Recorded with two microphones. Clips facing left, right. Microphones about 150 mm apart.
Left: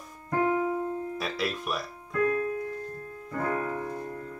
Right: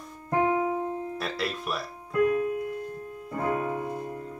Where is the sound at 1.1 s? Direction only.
Centre (ahead or behind).